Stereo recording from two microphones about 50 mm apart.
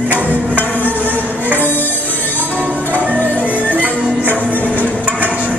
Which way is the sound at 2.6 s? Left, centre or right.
Right.